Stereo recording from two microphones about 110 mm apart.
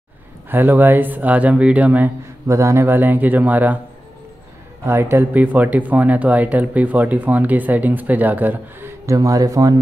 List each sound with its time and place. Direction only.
0.5 s speech: 20° right (ahead or behind)
2.4 s speech: 25° right (ahead or behind)
4.8 s speech: 20° right (ahead or behind)